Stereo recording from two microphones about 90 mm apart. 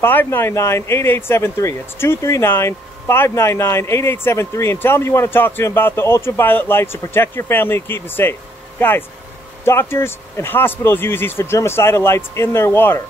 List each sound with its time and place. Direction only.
0.0 s speech: 25° left (ahead or behind)